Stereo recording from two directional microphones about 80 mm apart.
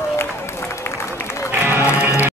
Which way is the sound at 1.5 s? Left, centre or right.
Right.